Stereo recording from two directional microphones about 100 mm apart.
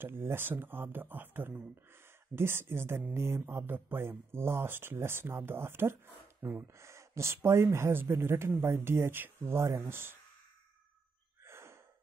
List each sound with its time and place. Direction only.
0.0 s speech: 25° right (ahead or behind)
11.4 s gasp: 25° right (ahead or behind)